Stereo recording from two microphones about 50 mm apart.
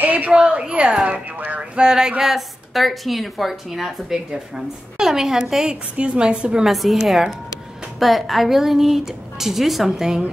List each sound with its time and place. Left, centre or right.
0.0 s a sound: right
0.3 s a woman's voice: right
5.9 s a woman's voice: centre
6.6 s a woman's voice: centre